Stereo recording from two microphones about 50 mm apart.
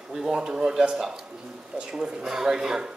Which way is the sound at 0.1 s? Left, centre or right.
Centre.